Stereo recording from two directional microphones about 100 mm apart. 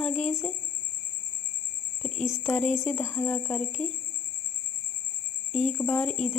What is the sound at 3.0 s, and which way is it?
Speech, 25° left (ahead or behind).